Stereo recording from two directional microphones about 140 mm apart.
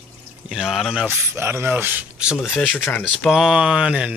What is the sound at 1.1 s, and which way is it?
Speech, 15° right (ahead or behind).